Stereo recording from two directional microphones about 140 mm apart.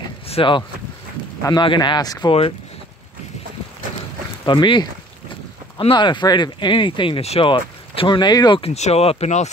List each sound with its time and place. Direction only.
0.3 s speech: 35° left (ahead or behind)
4.5 s speech: 35° left (ahead or behind); by 9.5 s 50° left (ahead or behind)